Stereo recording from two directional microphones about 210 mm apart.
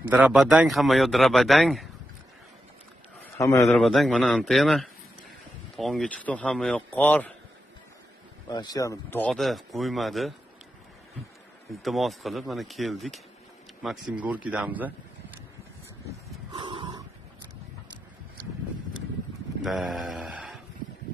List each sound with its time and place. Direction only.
0.1 s speech: 5° right (ahead or behind)
3.3 s a man's voice: 15° left (ahead or behind)
3.6 s speech: centre (ahead or behind)
8.5 s speech: 20° left (ahead or behind); by 10.3 s centre (ahead or behind)
11.7 s speech: centre (ahead or behind)
16.5 s a sound: 25° right (ahead or behind)
19.6 s a sound: centre (ahead or behind)